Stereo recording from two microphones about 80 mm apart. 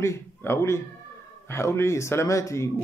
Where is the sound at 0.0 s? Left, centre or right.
Left.